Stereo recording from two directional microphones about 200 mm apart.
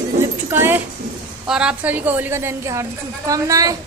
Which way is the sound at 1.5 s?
5° right (ahead or behind).